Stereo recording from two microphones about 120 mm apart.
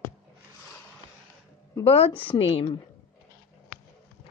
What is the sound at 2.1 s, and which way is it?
Speech, 15° left (ahead or behind).